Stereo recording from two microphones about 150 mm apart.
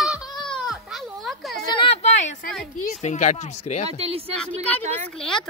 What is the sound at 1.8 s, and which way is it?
Speech, 40° left (ahead or behind).